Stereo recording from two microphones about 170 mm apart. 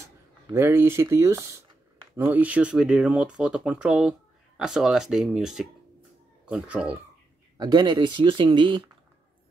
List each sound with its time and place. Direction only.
0.0 s speech: 15° right (ahead or behind)
7.5 s speech: 25° right (ahead or behind)